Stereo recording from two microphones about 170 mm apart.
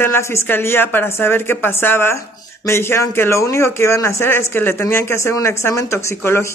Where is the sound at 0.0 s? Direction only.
15° left (ahead or behind).